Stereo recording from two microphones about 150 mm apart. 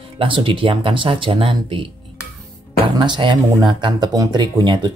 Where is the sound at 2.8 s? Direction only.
30° right (ahead or behind).